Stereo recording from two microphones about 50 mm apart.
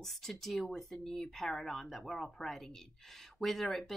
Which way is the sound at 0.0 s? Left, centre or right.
Centre.